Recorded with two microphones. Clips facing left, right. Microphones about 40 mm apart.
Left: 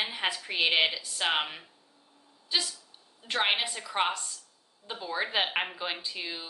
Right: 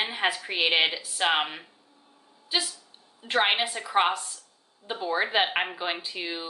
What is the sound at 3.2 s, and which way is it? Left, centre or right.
Speech, right.